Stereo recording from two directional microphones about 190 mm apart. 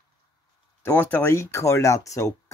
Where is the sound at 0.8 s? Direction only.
10° left (ahead or behind).